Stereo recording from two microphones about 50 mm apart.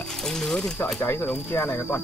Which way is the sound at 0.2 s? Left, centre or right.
Centre.